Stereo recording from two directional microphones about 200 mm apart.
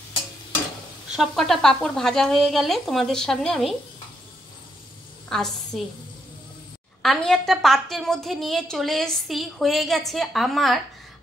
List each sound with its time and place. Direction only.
1.1 s a woman's voice: centre (ahead or behind)
5.3 s a woman's voice: centre (ahead or behind)
7.0 s a woman's voice: centre (ahead or behind)